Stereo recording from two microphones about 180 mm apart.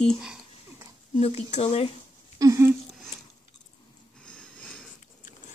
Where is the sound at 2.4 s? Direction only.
20° right (ahead or behind).